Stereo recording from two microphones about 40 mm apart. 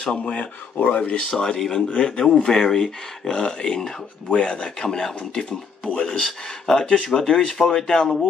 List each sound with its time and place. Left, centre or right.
0.1 s speech: left
1.3 s speech: centre
4.8 s speech: centre
5.9 s speech: left